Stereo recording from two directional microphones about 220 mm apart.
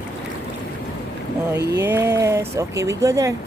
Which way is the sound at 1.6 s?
50° right (ahead or behind).